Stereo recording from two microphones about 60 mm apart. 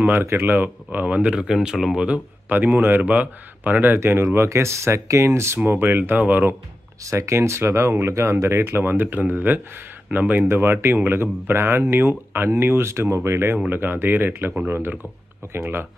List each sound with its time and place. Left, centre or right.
0.0 s speech: right; by 2.0 s centre
2.5 s speech: right
4.0 s speech: right
5.7 s speech: right
7.1 s speech: right
10.5 s speech: right